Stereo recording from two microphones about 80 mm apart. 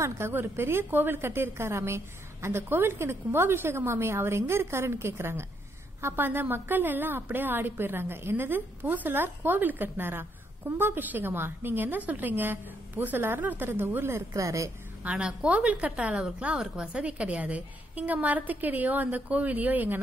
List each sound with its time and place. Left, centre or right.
0.0 s a woman's voice: right
14.3 s a woman's voice: right
15.0 s a woman's voice: centre